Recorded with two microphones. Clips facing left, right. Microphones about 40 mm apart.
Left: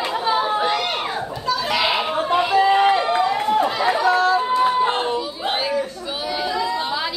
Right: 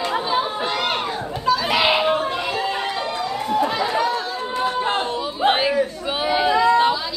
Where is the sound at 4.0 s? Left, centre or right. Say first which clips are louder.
Left 5 dB; left.